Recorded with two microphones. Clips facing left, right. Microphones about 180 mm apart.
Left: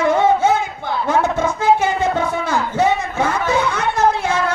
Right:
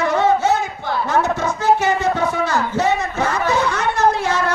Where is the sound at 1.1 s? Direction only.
55° left (ahead or behind).